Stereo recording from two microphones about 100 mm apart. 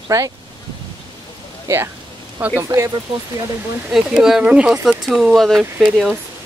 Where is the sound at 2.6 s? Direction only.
30° right (ahead or behind).